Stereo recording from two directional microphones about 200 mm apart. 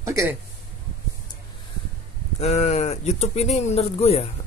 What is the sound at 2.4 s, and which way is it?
Speech, 35° left (ahead or behind).